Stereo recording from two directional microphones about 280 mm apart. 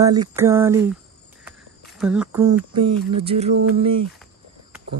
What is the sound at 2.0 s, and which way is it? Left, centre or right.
Mantra, centre.